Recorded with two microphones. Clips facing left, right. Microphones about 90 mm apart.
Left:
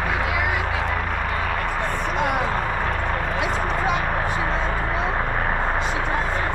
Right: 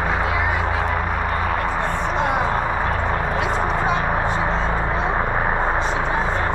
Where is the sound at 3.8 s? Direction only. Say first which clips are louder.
Right 2 dB; 15° right (ahead or behind).